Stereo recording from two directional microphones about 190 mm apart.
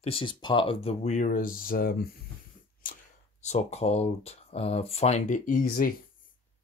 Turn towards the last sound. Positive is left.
turn(degrees=50)  # may be behind; listen again after turning